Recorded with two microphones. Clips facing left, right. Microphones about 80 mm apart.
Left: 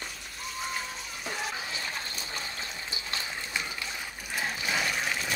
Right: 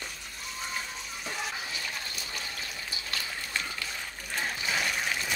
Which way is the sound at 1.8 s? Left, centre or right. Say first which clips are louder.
Left 1 dB; left.